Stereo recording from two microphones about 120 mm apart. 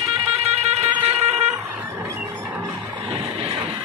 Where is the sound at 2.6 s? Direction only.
25° right (ahead or behind).